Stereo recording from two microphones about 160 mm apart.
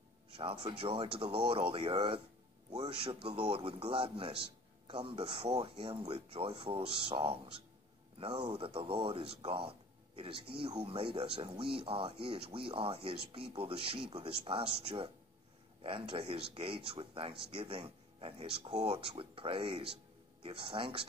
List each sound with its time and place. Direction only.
0.4 s speech: 35° right (ahead or behind)